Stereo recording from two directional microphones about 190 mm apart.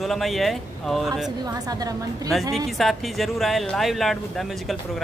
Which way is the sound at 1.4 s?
20° right (ahead or behind).